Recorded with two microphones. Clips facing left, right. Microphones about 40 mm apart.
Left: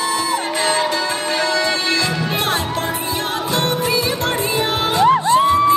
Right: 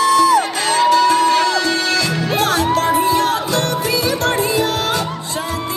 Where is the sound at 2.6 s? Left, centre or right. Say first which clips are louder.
Right 6 dB; right.